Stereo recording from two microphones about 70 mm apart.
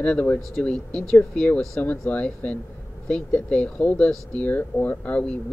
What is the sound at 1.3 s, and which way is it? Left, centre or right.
Speech, left.